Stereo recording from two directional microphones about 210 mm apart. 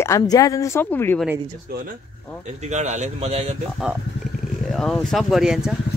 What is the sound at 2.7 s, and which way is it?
Speech, 35° right (ahead or behind).